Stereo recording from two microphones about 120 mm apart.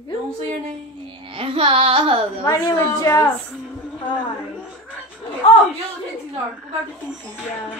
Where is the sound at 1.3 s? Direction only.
50° right (ahead or behind).